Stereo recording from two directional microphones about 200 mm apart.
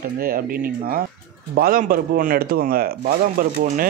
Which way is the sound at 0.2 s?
45° right (ahead or behind).